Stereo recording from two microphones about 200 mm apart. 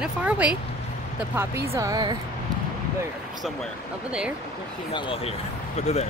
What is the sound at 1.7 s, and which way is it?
Speech, 15° right (ahead or behind).